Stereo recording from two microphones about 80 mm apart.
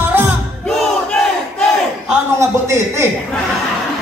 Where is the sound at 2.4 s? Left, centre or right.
Right.